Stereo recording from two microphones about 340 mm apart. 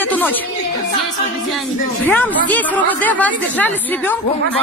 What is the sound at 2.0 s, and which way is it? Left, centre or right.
A woman's voice, centre.